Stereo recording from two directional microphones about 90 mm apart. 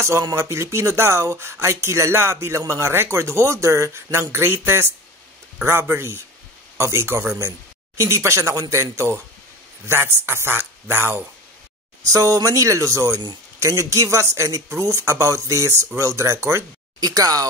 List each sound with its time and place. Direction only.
0.2 s speech: 35° right (ahead or behind)
12.1 s speech: 40° right (ahead or behind)
17.0 s speech: 45° right (ahead or behind)